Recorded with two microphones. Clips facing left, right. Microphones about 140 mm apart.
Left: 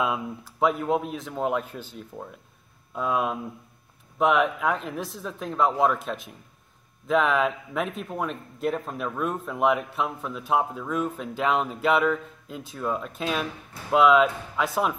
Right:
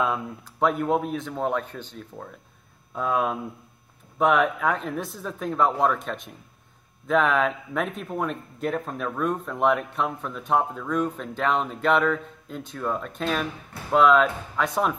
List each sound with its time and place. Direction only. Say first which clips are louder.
0.0 s speech: right 1 dB; 5° left (ahead or behind)